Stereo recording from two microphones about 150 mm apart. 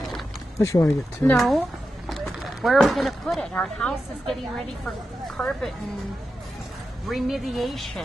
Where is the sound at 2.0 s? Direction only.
Centre (ahead or behind).